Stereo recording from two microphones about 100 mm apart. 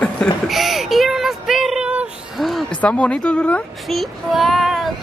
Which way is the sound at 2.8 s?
10° left (ahead or behind).